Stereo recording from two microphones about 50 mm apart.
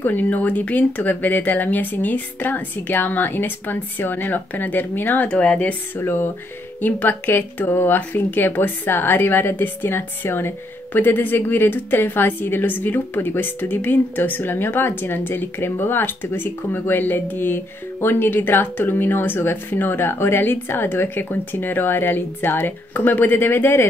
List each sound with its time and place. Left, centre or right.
0.0 s speech: left
5.3 s speech: left
5.9 s speech: left
6.8 s speech: left